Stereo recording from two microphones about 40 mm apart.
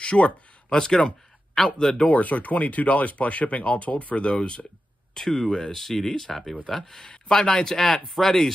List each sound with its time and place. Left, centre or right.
0.0 s speech: left
2.0 s speech: left
5.1 s speech: centre